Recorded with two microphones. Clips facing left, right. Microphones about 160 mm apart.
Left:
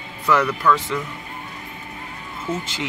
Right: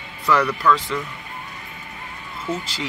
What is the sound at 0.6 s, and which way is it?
Speech, 15° left (ahead or behind).